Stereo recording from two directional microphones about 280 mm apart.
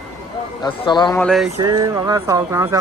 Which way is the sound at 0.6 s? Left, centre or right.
Centre.